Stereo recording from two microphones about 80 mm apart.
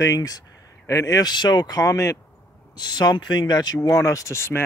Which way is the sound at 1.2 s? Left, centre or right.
Left.